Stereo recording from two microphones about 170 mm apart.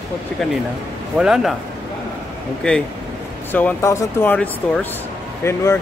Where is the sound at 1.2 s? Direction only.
Centre (ahead or behind).